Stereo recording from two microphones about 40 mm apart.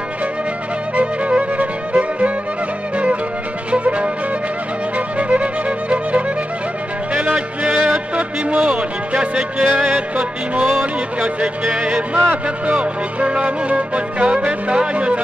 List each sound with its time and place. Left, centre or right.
0.9 s music: right
3.8 s music: right
11.1 s speech: right